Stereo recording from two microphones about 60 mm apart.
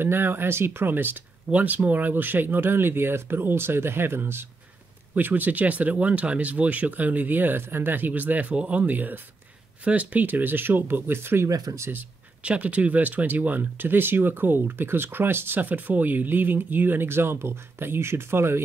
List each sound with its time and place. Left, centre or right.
0.0 s speech: right
5.1 s speech: right
11.4 s speech: right
12.4 s speech: right